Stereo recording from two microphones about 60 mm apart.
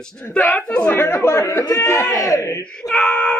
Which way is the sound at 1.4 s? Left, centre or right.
Left.